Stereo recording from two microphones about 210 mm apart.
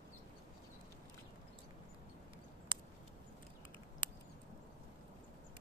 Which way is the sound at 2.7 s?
20° right (ahead or behind).